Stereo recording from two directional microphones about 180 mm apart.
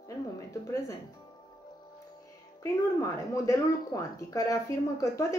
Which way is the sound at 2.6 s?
15° left (ahead or behind).